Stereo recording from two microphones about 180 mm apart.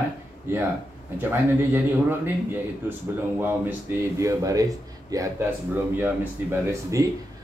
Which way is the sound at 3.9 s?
10° right (ahead or behind).